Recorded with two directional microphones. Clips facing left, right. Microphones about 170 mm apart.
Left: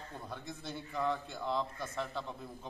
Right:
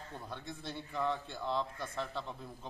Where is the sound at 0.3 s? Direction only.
Centre (ahead or behind).